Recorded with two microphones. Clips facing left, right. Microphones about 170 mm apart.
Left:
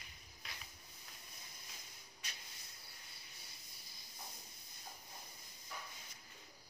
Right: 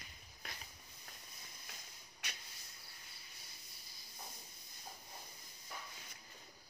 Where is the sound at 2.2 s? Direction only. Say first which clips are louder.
Right 3 dB; 75° right (ahead or behind).